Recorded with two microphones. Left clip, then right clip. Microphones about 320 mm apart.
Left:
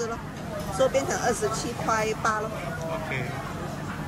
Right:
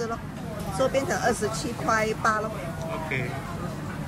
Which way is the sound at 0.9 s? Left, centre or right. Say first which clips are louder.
Even; right.